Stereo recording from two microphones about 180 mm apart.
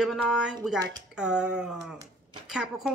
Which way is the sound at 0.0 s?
5° right (ahead or behind).